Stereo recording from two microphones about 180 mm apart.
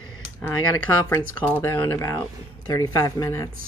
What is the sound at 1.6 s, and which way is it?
Speech, 15° left (ahead or behind).